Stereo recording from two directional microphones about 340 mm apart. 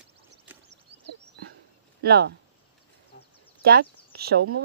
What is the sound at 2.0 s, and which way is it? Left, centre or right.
Speech, right.